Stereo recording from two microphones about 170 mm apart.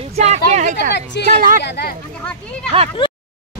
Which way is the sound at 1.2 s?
50° right (ahead or behind).